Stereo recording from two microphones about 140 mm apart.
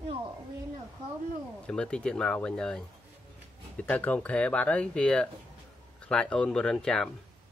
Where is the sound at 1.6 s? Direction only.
5° left (ahead or behind).